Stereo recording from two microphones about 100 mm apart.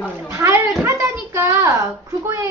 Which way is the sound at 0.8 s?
30° right (ahead or behind).